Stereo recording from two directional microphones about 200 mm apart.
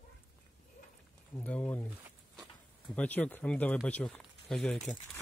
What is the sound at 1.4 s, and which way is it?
Speech, 10° left (ahead or behind).